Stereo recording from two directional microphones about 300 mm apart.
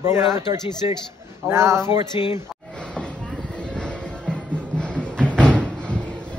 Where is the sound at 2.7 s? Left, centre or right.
Centre.